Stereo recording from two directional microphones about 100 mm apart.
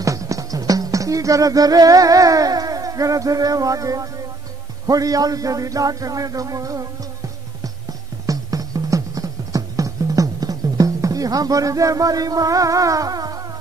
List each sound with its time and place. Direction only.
0.0 s music: 35° right (ahead or behind)
4.8 s a man's voice: 35° right (ahead or behind)
8.3 s music: 35° right (ahead or behind)